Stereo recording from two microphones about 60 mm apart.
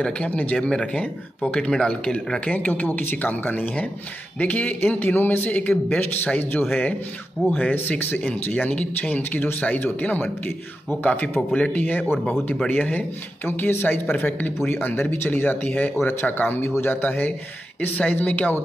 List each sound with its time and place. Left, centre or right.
0.0 s speech: left
0.7 s speech: centre
2.5 s speech: left
11.5 s speech: centre
11.8 s speech: left
13.5 s speech: left